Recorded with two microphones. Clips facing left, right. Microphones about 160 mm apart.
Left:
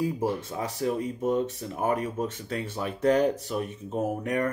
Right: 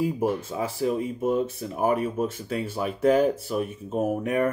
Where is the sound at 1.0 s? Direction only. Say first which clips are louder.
Right 2 dB; 10° right (ahead or behind).